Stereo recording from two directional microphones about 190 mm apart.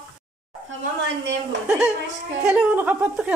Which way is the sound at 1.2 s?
70° right (ahead or behind).